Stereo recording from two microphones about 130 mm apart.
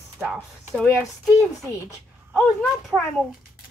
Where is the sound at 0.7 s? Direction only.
Centre (ahead or behind).